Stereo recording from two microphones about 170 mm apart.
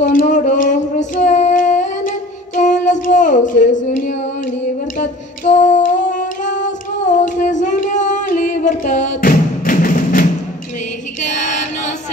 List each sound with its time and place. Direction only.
0.0 s female singing: 55° left (ahead or behind)
4.9 s a sound: 45° left (ahead or behind)
11.2 s female singing: 45° left (ahead or behind)